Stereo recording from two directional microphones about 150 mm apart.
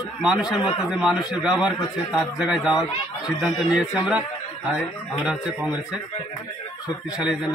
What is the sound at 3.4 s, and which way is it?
Speech, centre (ahead or behind).